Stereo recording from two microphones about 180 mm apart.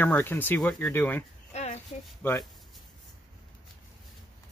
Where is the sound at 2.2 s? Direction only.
10° left (ahead or behind).